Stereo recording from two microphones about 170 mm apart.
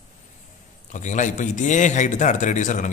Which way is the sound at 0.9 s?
45° left (ahead or behind).